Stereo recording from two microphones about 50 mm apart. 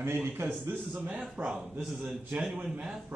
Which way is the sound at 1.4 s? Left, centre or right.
Right.